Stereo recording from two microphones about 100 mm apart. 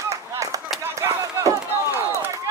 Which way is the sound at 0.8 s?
25° right (ahead or behind).